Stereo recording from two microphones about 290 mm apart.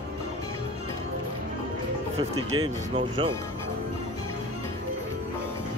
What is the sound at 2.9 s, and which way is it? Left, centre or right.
Speech, centre.